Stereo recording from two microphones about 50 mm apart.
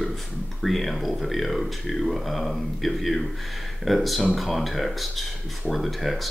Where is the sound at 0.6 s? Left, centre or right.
Centre.